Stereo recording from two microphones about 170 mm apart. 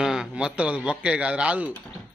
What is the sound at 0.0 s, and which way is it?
A man's voice, 5° right (ahead or behind).